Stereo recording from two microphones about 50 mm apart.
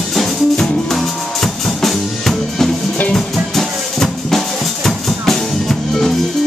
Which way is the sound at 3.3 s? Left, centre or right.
Centre.